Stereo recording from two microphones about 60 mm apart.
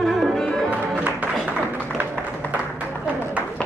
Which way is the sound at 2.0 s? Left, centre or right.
Right.